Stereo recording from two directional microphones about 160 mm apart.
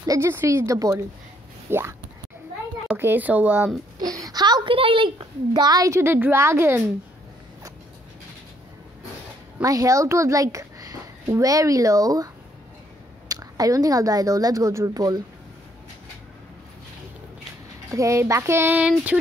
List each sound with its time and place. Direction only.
0.0 s a woman's voice: 20° right (ahead or behind)
4.0 s a woman's voice: 25° right (ahead or behind)
9.6 s a child's voice: 20° right (ahead or behind)
13.3 s a woman's voice: 20° right (ahead or behind)
17.9 s speech: 20° right (ahead or behind)